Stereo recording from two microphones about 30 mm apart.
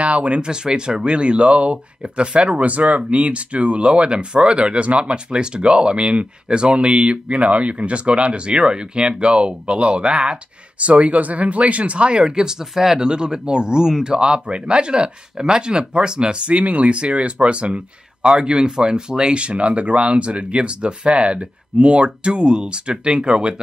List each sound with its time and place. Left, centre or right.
0.0 s speech: right
0.4 s speech: right
10.8 s speech: right; by 13.0 s centre
13.0 s speech: right
16.6 s speech: right
19.4 s speech: right